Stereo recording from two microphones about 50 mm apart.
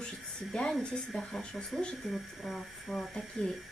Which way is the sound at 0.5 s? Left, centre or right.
Centre.